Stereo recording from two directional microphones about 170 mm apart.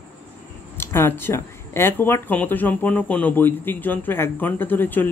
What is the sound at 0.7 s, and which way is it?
Speech, 15° left (ahead or behind).